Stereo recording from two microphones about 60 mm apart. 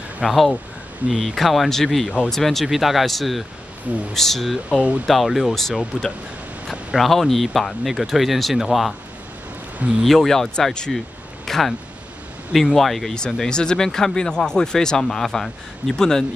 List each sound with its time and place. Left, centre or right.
0.2 s speech: centre
7.1 s speech: centre
9.8 s a man's voice: right
10.0 s speech: centre
11.4 s a sound: centre
12.5 s speech: centre